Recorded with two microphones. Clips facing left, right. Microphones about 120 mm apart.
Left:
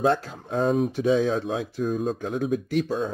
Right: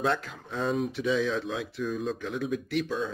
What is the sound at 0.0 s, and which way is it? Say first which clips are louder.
Speech: left 6 dB; 40° left (ahead or behind).